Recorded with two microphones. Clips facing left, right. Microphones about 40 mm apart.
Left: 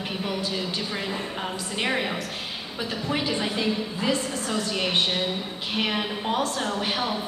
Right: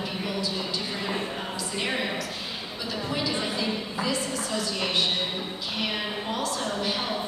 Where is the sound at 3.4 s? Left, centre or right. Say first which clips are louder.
Left 3 dB; left.